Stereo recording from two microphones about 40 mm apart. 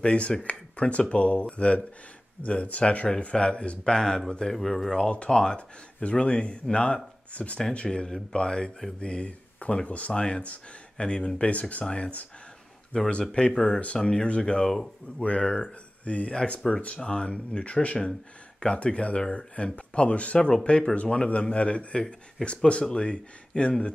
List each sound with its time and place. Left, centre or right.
0.0 s speech: left
4.6 s speech: centre
4.9 s speech: left
9.8 s speech: left
10.1 s speech: left
15.1 s speech: left
16.6 s speech: centre
17.0 s speech: left